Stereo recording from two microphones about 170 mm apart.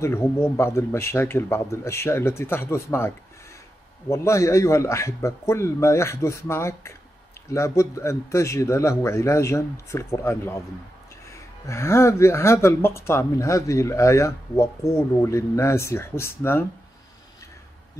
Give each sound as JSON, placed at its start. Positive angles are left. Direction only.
{"t": 0.0, "sound": "speech", "side_deg": 15}
{"t": 4.1, "sound": "speech", "side_deg": 15}